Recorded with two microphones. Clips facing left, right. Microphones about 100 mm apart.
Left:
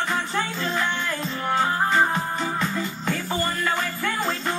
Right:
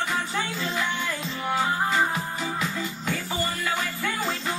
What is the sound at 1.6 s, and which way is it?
Music, 40° left (ahead or behind).